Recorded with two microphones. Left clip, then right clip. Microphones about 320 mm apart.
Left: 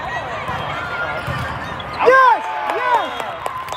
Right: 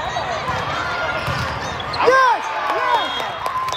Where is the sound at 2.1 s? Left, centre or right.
Left.